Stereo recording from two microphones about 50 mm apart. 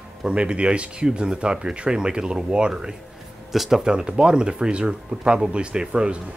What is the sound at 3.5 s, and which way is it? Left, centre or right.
Speech, centre.